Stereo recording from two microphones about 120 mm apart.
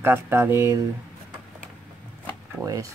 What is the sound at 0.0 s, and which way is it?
Speech, 20° right (ahead or behind).